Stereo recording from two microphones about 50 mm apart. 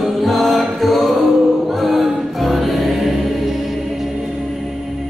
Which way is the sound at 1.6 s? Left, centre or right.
Centre.